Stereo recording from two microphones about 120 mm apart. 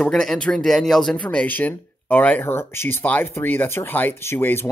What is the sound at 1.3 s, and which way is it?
Speech, 15° left (ahead or behind).